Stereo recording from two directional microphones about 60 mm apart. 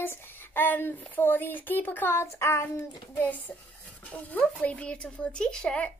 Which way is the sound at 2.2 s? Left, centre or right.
Left.